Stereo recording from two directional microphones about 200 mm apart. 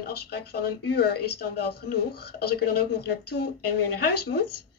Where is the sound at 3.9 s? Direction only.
50° left (ahead or behind).